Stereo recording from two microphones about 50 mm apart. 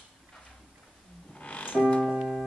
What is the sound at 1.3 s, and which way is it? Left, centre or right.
Music, left.